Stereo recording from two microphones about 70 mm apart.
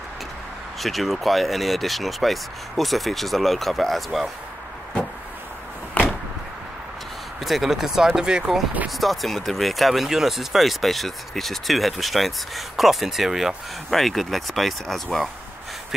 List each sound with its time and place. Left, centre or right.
0.7 s speech: centre
6.0 s a sound: left
7.3 s speech: centre